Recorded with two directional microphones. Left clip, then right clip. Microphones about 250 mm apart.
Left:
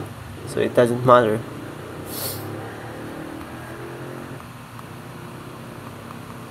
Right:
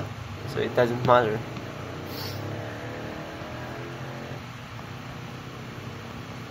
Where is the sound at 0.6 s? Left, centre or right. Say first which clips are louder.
Left 6 dB; left.